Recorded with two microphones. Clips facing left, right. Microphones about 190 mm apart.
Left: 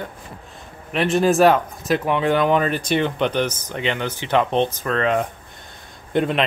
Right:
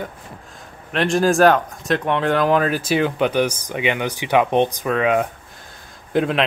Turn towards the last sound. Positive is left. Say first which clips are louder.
# right 1 dB
turn(degrees=0)  # may be behind; listen again after turning